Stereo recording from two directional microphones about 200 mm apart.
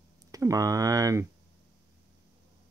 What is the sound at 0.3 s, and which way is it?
Speech, 15° right (ahead or behind).